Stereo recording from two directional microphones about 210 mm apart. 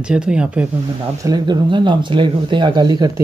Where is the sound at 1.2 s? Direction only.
20° right (ahead or behind).